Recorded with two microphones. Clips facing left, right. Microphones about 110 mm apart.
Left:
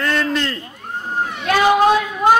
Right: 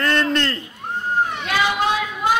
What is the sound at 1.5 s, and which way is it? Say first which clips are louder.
Speech: left 10 dB; 45° left (ahead or behind).